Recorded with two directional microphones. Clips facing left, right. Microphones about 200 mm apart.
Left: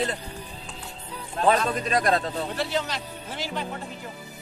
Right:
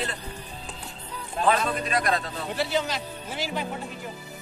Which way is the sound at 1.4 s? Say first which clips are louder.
Left 2 dB; 45° left (ahead or behind).